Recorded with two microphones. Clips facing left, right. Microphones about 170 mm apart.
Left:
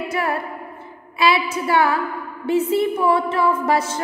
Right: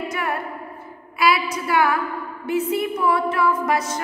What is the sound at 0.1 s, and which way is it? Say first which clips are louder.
Music: left 6 dB; 30° left (ahead or behind).